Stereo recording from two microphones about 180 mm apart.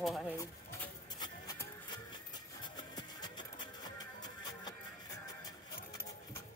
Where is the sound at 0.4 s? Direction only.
15° left (ahead or behind).